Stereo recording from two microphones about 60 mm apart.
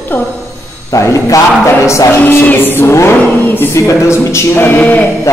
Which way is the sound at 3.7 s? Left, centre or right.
Left.